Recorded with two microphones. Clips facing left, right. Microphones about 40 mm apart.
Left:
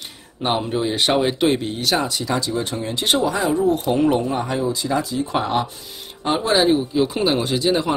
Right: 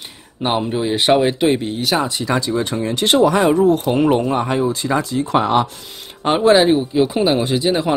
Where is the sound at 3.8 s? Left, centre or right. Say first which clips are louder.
Right 3 dB; right.